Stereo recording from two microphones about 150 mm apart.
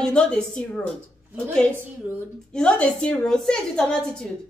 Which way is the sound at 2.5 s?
5° left (ahead or behind).